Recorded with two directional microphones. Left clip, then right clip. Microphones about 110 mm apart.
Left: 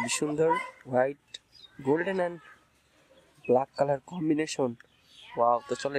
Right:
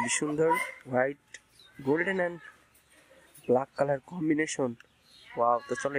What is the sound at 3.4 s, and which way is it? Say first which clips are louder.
Speech: left 2 dB; centre (ahead or behind).